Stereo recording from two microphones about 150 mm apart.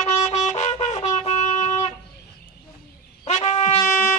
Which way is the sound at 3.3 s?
45° left (ahead or behind).